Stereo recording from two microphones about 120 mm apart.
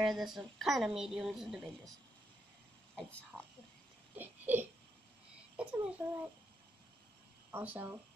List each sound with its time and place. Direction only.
0.0 s a woman's voice: 5° right (ahead or behind)
3.0 s speech: 10° left (ahead or behind)
4.1 s a sound: 15° right (ahead or behind)
5.6 s a child's voice: 10° right (ahead or behind)
7.5 s speech: 15° right (ahead or behind)